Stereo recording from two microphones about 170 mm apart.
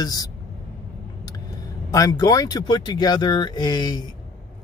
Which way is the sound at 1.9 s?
20° left (ahead or behind).